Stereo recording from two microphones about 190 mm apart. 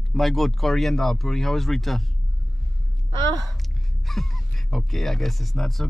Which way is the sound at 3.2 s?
20° right (ahead or behind).